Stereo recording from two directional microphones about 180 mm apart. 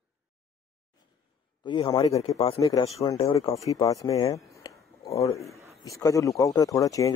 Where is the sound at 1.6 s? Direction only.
25° left (ahead or behind).